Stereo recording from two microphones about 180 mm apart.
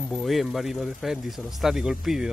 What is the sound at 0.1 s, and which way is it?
Speech, centre (ahead or behind).